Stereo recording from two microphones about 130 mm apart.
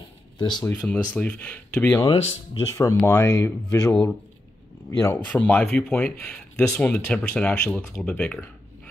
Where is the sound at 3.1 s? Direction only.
20° left (ahead or behind).